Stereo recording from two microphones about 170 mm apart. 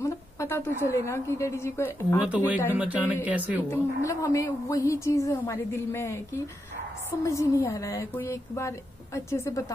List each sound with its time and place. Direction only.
0.0 s a woman's voice: 15° left (ahead or behind)
2.2 s speech: 10° right (ahead or behind)
3.7 s a woman's voice: 20° left (ahead or behind)